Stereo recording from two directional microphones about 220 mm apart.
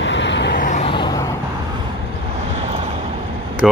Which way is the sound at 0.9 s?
20° left (ahead or behind).